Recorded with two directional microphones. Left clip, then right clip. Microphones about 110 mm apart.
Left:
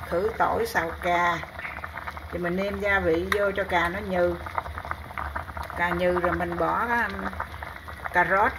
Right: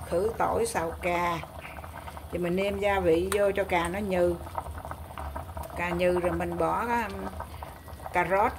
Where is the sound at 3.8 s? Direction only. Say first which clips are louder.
Left 2 dB; 20° right (ahead or behind).